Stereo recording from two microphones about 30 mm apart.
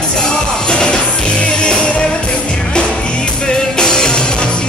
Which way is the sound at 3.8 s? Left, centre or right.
Left.